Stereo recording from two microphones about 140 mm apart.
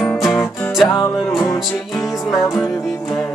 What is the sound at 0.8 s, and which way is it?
Music, 25° left (ahead or behind).